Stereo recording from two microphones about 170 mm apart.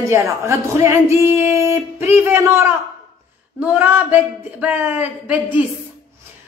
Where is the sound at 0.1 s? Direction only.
15° right (ahead or behind).